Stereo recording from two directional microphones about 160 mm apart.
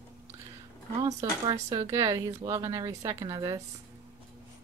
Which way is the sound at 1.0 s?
25° right (ahead or behind).